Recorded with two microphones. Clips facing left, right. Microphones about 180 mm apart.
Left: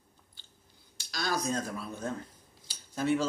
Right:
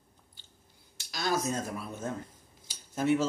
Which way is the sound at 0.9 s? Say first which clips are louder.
Right 2 dB; 20° right (ahead or behind).